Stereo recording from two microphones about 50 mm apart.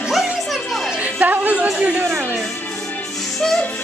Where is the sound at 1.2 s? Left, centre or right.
Right.